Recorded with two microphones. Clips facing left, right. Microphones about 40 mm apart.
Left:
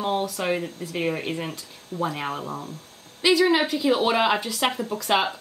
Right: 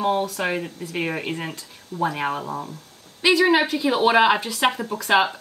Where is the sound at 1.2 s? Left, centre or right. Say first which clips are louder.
Right 1 dB; centre.